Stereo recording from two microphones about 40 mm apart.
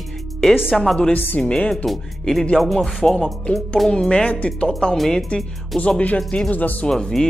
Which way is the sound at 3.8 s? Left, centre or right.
Left.